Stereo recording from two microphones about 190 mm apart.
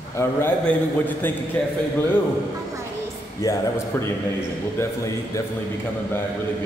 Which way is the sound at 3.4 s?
15° left (ahead or behind).